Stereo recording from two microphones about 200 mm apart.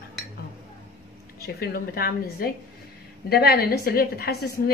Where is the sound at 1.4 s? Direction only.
50° left (ahead or behind).